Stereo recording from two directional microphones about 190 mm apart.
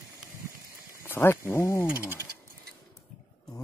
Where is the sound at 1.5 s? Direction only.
15° left (ahead or behind).